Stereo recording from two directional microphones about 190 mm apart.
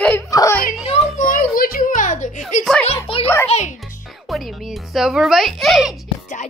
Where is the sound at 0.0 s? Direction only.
15° left (ahead or behind).